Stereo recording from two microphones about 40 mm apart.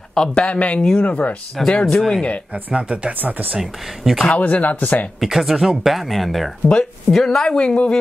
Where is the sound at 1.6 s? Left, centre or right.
Centre.